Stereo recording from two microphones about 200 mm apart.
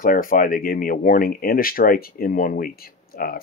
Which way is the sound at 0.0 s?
45° left (ahead or behind).